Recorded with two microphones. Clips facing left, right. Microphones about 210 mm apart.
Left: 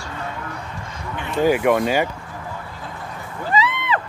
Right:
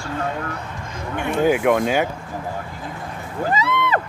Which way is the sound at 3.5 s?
50° right (ahead or behind).